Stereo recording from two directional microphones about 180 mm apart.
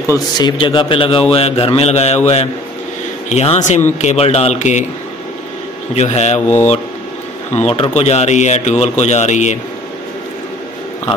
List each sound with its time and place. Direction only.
0.1 s a man's voice: 25° left (ahead or behind); by 4.8 s 40° left (ahead or behind)
5.9 s speech: 40° left (ahead or behind)
7.5 s speech: 35° left (ahead or behind)